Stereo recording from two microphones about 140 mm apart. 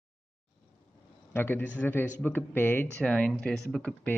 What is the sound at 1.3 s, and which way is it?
Speech, 15° left (ahead or behind).